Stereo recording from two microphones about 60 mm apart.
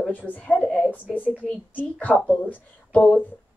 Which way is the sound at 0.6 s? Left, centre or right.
Centre.